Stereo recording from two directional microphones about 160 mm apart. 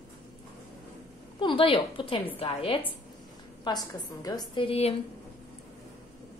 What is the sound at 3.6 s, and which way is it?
A woman's voice, 25° left (ahead or behind).